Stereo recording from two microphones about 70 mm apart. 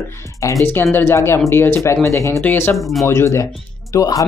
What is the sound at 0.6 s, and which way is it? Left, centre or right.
Speech, left.